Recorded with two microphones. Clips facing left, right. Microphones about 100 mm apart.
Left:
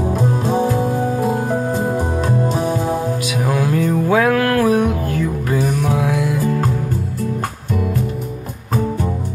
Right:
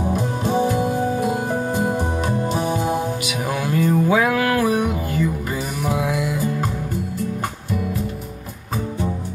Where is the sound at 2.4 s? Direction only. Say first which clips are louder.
Left 3 dB; 40° left (ahead or behind).